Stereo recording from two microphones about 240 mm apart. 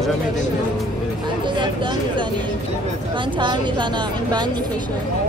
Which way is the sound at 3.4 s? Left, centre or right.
Centre.